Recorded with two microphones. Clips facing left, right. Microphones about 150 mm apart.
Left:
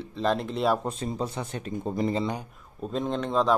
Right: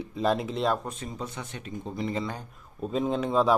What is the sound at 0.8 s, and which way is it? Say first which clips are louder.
Speech: left 6 dB; 35° left (ahead or behind).